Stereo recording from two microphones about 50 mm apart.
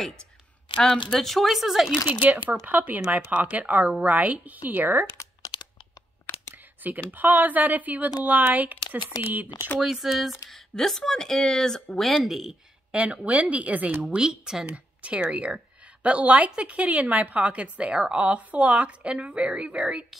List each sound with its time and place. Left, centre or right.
1.1 s speech: centre
2.2 s speech: right
6.8 s speech: right
9.8 s speech: centre
12.9 s a woman's voice: right
14.0 s speech: centre
15.0 s a woman's voice: right